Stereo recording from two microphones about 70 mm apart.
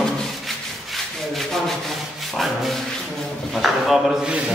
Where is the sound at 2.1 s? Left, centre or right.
Centre.